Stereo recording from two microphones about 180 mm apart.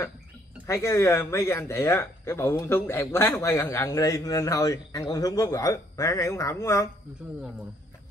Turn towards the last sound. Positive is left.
turn(degrees=-5)  # may be behind; listen again after turning